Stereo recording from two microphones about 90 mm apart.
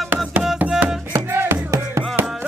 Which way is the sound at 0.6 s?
10° right (ahead or behind).